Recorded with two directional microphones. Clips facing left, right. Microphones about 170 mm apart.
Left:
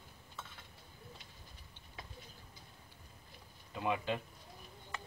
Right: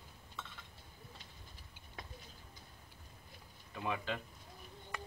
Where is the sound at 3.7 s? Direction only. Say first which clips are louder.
Left 4 dB; 20° left (ahead or behind).